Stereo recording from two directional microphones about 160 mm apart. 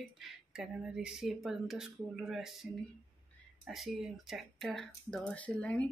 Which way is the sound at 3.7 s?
Centre (ahead or behind).